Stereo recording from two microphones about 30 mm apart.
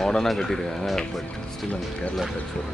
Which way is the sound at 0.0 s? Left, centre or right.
Centre.